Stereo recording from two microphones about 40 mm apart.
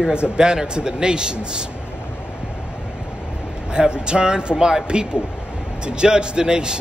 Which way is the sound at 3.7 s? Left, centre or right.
Right.